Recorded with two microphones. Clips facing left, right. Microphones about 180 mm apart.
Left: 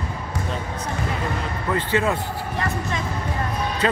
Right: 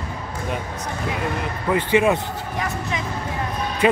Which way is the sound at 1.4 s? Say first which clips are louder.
Right 2 dB; 15° right (ahead or behind).